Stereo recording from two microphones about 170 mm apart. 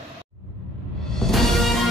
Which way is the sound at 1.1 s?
Centre (ahead or behind).